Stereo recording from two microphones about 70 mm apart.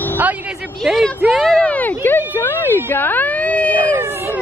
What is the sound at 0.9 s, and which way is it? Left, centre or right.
Speech, centre.